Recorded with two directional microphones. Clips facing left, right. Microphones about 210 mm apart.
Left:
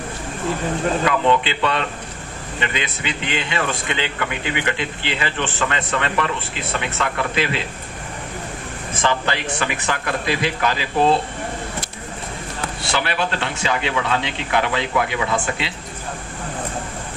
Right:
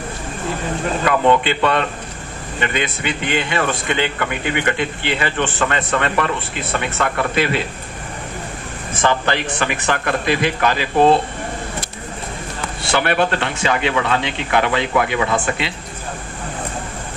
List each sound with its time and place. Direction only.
1.0 s a man's voice: 50° right (ahead or behind)
9.0 s speech: 50° right (ahead or behind)
12.9 s speech: 55° right (ahead or behind)